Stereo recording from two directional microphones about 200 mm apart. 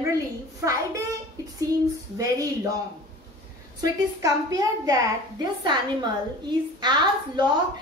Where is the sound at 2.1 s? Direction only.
15° right (ahead or behind).